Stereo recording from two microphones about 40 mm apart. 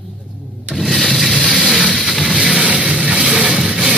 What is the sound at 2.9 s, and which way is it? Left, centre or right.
Music, right.